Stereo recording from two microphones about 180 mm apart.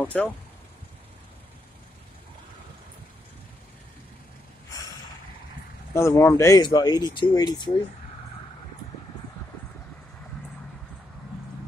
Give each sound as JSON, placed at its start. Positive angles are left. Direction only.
{"t": 0.0, "sound": "speech", "side_deg": 5}
{"t": 5.9, "sound": "speech", "side_deg": 15}